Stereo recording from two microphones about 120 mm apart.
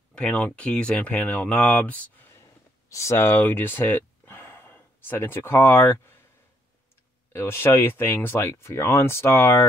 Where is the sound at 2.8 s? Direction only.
25° left (ahead or behind).